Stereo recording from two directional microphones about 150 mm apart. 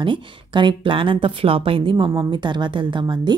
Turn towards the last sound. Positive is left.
turn(degrees=-30)  # may be behind; listen again after turning